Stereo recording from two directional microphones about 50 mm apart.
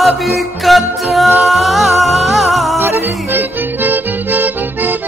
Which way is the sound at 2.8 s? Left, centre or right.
Right.